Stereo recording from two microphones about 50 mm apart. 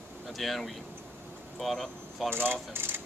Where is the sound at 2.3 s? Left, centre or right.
Right.